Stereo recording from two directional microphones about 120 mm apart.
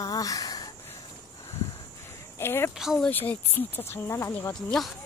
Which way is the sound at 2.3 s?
20° left (ahead or behind).